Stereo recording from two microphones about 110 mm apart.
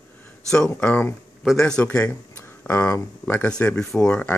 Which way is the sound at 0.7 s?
15° left (ahead or behind).